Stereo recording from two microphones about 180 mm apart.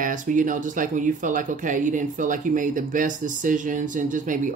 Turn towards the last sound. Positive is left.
turn(degrees=-45)  # may be behind; listen again after turning